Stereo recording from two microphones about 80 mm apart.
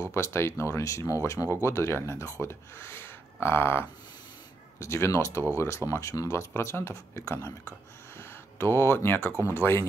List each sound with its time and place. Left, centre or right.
0.1 s speech: left
6.5 s speech: left